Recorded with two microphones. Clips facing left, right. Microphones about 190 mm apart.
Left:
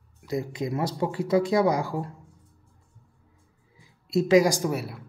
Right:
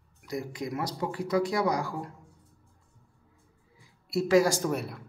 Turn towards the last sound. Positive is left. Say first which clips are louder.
# left 2 dB
turn(degrees=5)  # may be behind; listen again after turning